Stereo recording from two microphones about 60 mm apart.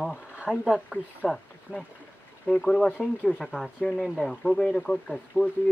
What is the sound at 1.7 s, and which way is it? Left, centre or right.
Speech, right.